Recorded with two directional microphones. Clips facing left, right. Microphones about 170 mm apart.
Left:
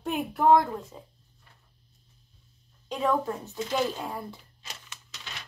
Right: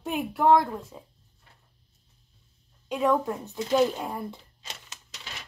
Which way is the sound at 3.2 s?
15° right (ahead or behind).